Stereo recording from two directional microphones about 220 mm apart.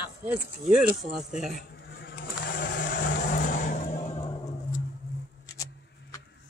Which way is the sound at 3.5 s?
35° left (ahead or behind).